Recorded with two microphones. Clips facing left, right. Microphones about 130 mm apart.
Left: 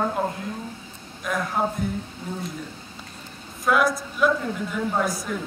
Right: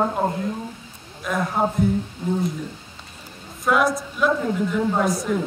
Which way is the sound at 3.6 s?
Centre (ahead or behind).